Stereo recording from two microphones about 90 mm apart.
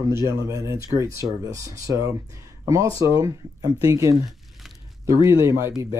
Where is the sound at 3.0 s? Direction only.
40° right (ahead or behind).